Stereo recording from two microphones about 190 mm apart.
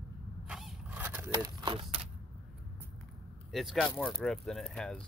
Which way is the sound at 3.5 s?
5° left (ahead or behind).